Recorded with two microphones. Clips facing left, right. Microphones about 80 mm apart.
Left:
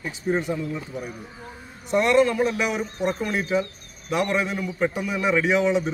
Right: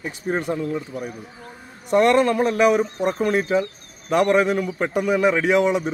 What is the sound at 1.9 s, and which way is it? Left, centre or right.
A man's voice, right.